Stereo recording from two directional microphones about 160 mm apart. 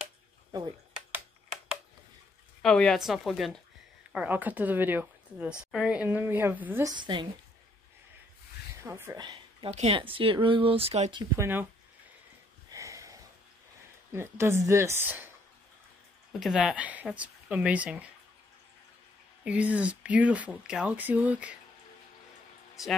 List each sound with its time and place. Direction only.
2.6 s a woman's voice: 5° left (ahead or behind); by 6.9 s 10° right (ahead or behind)
7.0 s a woman's voice: 30° right (ahead or behind)
8.8 s a woman's voice: 15° right (ahead or behind)
9.2 s a sound: 25° right (ahead or behind)
9.7 s speech: 40° right (ahead or behind)
11.3 s a woman's voice: 15° right (ahead or behind)
12.7 s a sound: 20° right (ahead or behind)
14.1 s a woman's voice: 15° right (ahead or behind)
16.3 s a woman's voice: centre (ahead or behind)
19.4 s a woman's voice: 10° right (ahead or behind)